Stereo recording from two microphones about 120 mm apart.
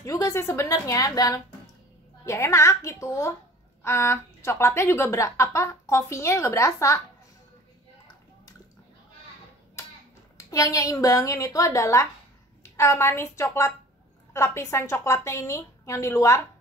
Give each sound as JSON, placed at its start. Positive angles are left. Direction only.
{"t": 0.0, "sound": "speech", "side_deg": 30}
{"t": 9.8, "sound": "a sound", "side_deg": 25}
{"t": 10.3, "sound": "speech", "side_deg": 25}